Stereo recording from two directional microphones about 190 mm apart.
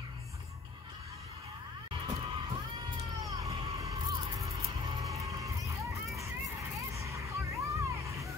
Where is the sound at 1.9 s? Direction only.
25° right (ahead or behind).